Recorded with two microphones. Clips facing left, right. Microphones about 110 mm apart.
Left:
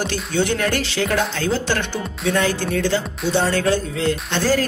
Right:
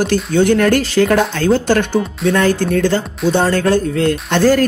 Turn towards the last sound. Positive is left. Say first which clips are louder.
# right 7 dB
turn(degrees=-55)  # may be behind; listen again after turning